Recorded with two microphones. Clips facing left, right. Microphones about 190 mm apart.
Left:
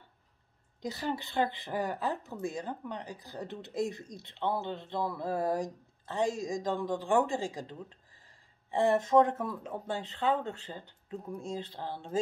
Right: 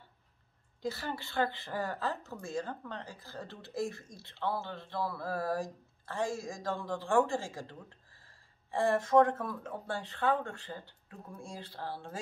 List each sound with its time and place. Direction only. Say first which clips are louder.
0.8 s speech: left 2 dB; 20° left (ahead or behind)
8.7 s speech: left 1 dB; 20° left (ahead or behind)